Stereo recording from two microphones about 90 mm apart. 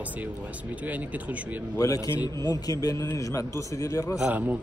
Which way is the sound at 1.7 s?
40° left (ahead or behind).